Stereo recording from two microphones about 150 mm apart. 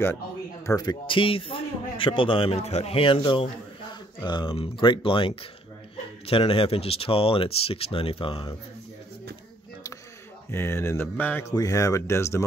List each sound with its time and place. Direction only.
0.7 s a man's voice: 25° left (ahead or behind)
10.5 s speech: 15° left (ahead or behind)
11.5 s speech: 20° left (ahead or behind)